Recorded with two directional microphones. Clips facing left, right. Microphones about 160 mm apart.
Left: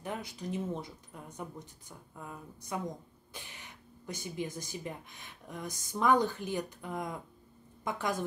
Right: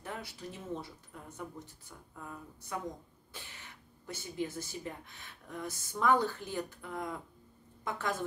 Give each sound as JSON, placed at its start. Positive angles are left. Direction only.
{"t": 0.0, "sound": "a woman's voice", "side_deg": 15}